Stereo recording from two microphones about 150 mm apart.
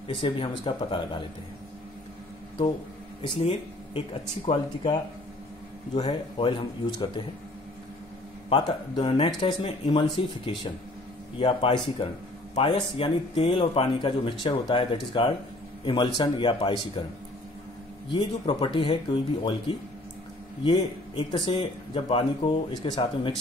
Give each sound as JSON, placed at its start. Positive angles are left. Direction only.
{"t": 0.1, "sound": "speech", "side_deg": 35}
{"t": 3.3, "sound": "speech", "side_deg": 40}
{"t": 5.9, "sound": "speech", "side_deg": 40}
{"t": 8.5, "sound": "speech", "side_deg": 35}
{"t": 18.1, "sound": "speech", "side_deg": 35}
{"t": 20.6, "sound": "speech", "side_deg": 35}